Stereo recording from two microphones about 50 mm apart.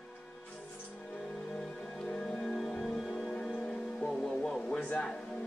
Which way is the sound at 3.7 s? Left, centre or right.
Centre.